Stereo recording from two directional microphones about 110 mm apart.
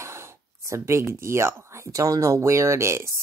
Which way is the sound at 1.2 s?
25° right (ahead or behind).